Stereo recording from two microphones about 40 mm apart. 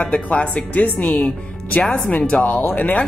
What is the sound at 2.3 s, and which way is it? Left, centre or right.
Speech, left.